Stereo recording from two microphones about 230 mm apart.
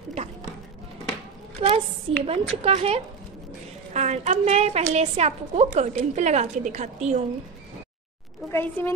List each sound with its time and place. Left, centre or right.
0.1 s a sound: right
1.6 s a woman's voice: right
8.5 s a woman's voice: centre